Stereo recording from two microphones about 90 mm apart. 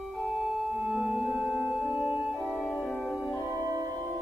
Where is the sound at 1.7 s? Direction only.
15° right (ahead or behind).